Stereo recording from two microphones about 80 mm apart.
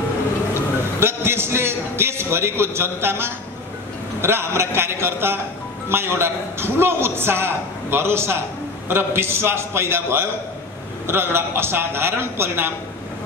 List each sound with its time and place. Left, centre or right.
0.6 s a man's voice: right